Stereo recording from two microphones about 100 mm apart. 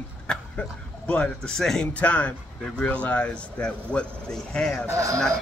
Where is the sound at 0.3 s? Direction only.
10° left (ahead or behind).